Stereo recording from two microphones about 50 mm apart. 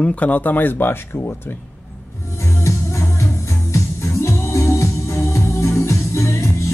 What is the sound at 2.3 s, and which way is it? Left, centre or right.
Music, left.